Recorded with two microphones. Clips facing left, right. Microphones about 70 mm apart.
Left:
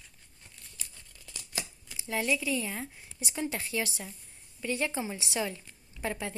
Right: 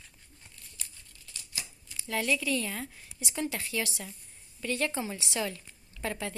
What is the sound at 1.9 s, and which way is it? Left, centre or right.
Speech, centre.